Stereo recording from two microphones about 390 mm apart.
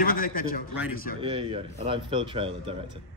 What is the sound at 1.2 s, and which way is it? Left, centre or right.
Speech, centre.